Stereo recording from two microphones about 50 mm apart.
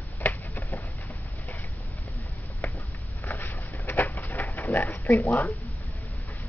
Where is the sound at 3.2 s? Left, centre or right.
Left.